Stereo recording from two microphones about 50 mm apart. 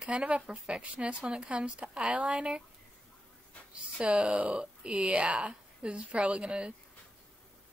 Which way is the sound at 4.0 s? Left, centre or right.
Right.